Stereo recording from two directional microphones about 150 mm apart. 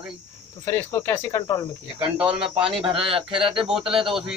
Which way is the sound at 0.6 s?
15° left (ahead or behind).